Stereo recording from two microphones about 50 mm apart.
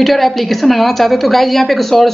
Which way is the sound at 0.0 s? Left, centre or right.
Centre.